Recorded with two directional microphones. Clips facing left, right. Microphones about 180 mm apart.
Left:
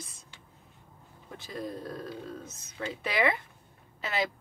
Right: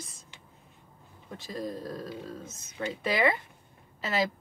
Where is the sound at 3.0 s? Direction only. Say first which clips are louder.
Right 2 dB; centre (ahead or behind).